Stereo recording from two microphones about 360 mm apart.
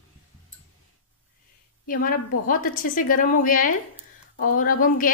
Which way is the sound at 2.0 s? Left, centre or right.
Left.